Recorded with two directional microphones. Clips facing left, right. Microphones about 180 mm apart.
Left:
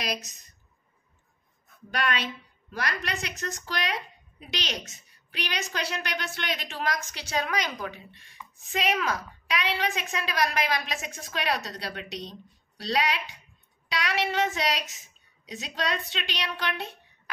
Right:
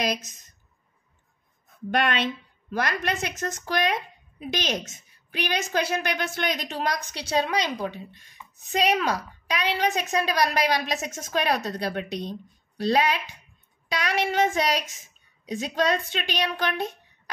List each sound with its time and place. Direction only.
0.0 s a woman's voice: 50° right (ahead or behind)
2.7 s a woman's voice: 50° right (ahead or behind)
13.8 s a woman's voice: 45° right (ahead or behind)